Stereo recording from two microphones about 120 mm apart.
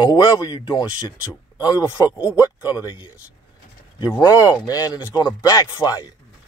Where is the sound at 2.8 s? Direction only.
40° left (ahead or behind).